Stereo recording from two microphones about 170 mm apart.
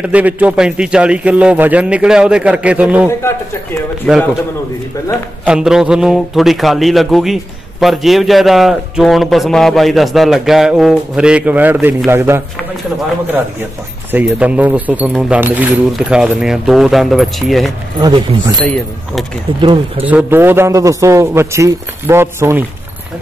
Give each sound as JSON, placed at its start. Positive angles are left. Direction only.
{"t": 0.0, "sound": "a man's voice", "side_deg": -10}
{"t": 3.1, "sound": "a man's voice", "side_deg": 15}
{"t": 4.1, "sound": "a man's voice", "side_deg": 0}
{"t": 5.4, "sound": "a man's voice", "side_deg": -5}
{"t": 14.1, "sound": "a man's voice", "side_deg": -10}
{"t": 18.0, "sound": "speech", "side_deg": -25}
{"t": 19.6, "sound": "speech", "side_deg": -30}
{"t": 20.1, "sound": "a man's voice", "side_deg": -10}